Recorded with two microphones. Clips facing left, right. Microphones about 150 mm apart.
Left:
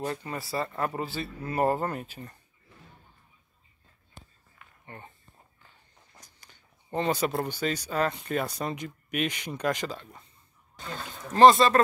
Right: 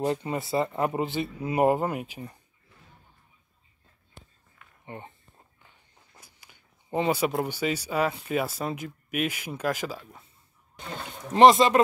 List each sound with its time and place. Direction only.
0.0 s speech: 20° right (ahead or behind)
4.8 s speech: 20° right (ahead or behind)
6.2 s speech: 10° right (ahead or behind)
11.3 s speech: 20° right (ahead or behind)